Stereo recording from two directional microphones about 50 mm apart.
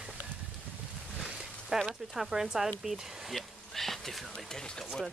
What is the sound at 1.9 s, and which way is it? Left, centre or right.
Speech, centre.